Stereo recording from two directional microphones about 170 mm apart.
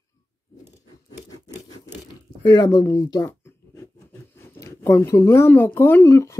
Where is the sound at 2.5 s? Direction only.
20° left (ahead or behind).